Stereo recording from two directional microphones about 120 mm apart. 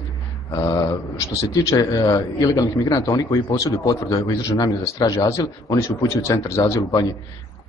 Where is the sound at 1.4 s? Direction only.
30° left (ahead or behind).